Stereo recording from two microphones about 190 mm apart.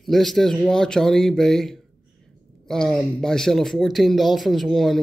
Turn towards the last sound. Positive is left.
turn(degrees=0)  # may be behind; listen again after turning